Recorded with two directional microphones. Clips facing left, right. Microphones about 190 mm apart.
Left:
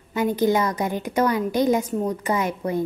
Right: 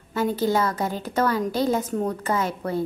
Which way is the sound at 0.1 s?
15° left (ahead or behind).